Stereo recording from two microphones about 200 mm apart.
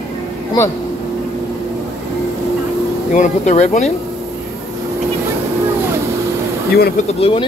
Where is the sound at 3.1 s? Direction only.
35° left (ahead or behind).